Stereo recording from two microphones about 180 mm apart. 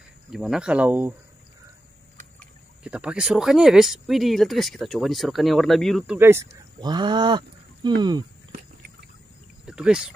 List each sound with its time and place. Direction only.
0.3 s speech: centre (ahead or behind)
2.8 s speech: 5° right (ahead or behind)
6.1 s speech: 10° right (ahead or behind)
6.8 s speech: 25° right (ahead or behind)
9.7 s speech: 5° right (ahead or behind)